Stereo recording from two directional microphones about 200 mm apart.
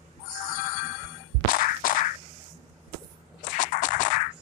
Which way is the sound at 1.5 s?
45° left (ahead or behind).